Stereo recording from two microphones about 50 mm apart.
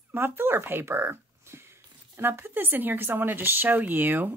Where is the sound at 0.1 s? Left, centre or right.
Right.